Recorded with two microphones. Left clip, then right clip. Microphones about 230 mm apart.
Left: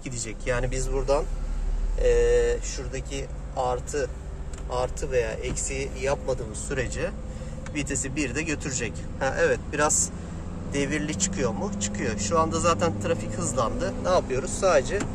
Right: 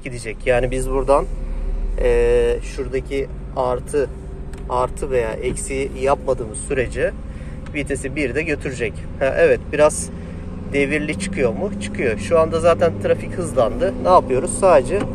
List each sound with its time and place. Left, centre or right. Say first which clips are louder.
0.0 s speech: right 9 dB; centre
10.8 s speech: right 8 dB; centre